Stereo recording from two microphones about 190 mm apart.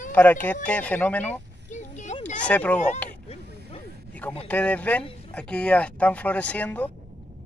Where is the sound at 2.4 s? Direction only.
5° left (ahead or behind).